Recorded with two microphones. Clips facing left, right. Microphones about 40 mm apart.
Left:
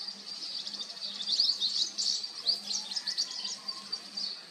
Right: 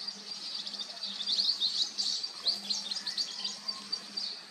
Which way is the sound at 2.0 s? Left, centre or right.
Right.